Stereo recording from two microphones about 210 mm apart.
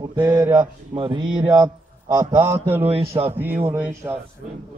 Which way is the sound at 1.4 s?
20° right (ahead or behind).